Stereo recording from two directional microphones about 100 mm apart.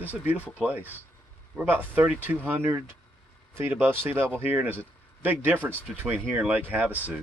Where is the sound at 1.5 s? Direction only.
15° right (ahead or behind).